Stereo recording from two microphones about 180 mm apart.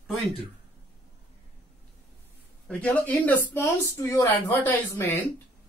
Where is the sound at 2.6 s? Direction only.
10° left (ahead or behind).